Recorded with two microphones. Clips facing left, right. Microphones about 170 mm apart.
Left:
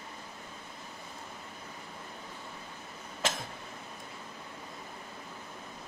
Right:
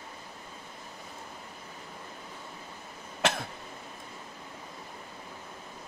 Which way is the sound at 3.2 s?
65° right (ahead or behind).